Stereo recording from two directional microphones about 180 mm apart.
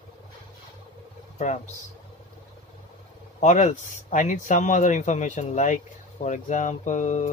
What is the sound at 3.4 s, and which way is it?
Speech, 40° left (ahead or behind).